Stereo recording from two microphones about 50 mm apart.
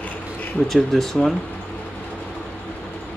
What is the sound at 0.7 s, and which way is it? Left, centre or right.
Speech, centre.